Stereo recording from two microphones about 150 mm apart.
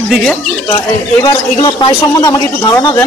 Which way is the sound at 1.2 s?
20° left (ahead or behind).